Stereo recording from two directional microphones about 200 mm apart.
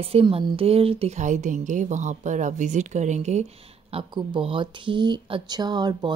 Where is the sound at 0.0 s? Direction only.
30° right (ahead or behind).